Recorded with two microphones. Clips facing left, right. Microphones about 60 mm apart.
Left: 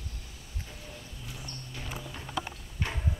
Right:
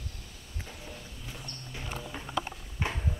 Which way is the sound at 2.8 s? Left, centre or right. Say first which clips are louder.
Right 2 dB; centre.